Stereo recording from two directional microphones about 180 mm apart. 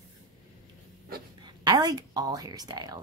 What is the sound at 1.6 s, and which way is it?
A woman's voice, 25° right (ahead or behind).